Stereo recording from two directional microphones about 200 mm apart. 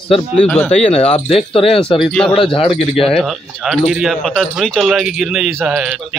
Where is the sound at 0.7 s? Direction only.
30° left (ahead or behind).